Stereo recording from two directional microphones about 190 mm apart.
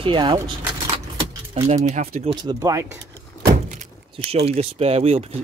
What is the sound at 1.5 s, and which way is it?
Speech, 35° right (ahead or behind).